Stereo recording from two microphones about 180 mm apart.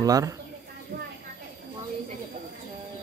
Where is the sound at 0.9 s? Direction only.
50° right (ahead or behind).